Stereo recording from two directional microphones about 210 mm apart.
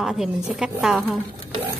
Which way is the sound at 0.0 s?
Centre (ahead or behind).